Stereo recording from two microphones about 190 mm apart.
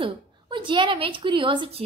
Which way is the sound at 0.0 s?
25° right (ahead or behind).